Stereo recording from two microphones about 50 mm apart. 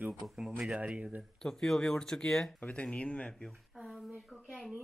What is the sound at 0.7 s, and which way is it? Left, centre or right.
Speech, right.